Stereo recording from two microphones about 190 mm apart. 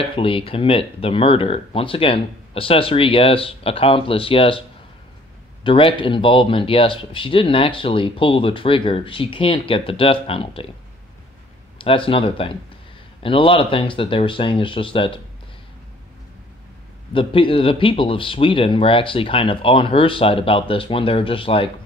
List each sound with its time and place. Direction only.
0.0 s speech: 25° left (ahead or behind)
11.8 s speech: 30° left (ahead or behind)
17.1 s speech: 25° left (ahead or behind)